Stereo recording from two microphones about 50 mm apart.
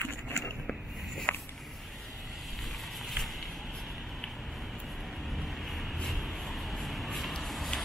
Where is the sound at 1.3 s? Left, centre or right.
Left.